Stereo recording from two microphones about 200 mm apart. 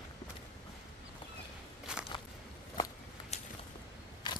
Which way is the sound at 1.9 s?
5° right (ahead or behind).